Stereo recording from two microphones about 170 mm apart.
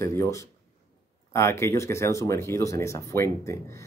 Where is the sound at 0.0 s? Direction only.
15° left (ahead or behind).